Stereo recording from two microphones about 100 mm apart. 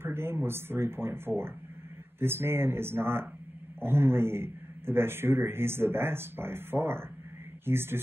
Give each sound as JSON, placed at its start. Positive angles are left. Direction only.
{"t": 0.0, "sound": "speech", "side_deg": -25}